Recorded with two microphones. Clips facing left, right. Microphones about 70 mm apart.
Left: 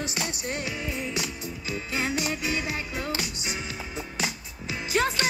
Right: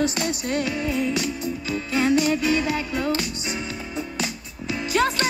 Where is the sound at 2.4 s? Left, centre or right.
Right.